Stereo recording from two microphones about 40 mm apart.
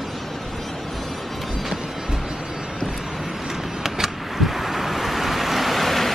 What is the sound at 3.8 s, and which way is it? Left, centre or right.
Vehicle, centre.